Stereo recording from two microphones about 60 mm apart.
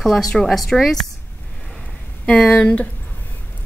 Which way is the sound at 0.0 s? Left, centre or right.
Centre.